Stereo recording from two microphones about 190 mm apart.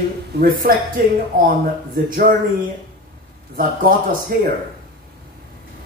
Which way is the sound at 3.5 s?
50° right (ahead or behind).